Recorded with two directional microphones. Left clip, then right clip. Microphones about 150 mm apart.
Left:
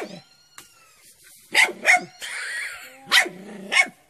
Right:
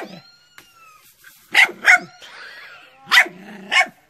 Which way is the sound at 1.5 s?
10° right (ahead or behind).